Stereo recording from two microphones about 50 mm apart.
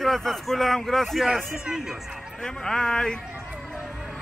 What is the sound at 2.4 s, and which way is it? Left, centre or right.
Speech, centre.